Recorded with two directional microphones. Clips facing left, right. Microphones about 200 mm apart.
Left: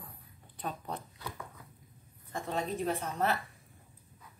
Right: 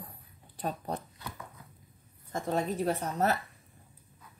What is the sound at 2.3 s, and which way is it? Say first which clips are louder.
Speech: right 4 dB; 40° right (ahead or behind).